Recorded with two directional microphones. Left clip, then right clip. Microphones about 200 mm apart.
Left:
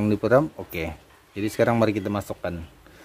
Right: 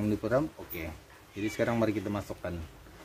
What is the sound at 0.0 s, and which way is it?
Speech, 40° left (ahead or behind).